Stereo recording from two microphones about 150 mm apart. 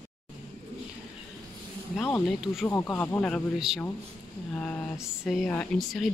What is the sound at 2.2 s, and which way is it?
Speech, centre (ahead or behind).